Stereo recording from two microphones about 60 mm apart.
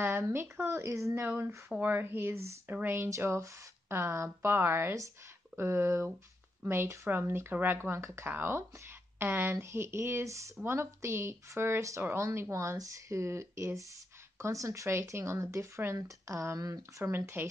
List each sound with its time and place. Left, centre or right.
0.0 s speech: right
1.8 s speech: right
2.3 s speech: right
2.7 s speech: right
3.2 s speech: right
10.2 s speech: right
10.6 s speech: right
12.7 s speech: right
16.5 s speech: right
17.0 s speech: right